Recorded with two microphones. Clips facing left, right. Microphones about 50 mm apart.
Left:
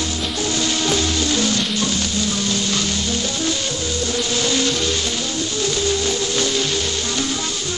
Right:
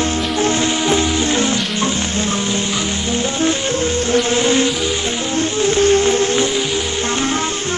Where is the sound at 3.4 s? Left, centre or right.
Right.